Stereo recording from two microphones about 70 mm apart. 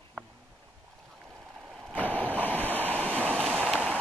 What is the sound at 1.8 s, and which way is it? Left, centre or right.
Vehicle, centre.